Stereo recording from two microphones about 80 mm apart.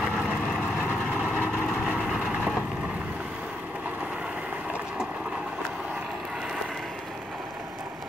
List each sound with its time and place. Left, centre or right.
1.9 s vehicle: centre